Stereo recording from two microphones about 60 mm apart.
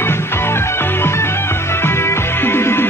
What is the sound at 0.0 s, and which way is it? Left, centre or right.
Music, left.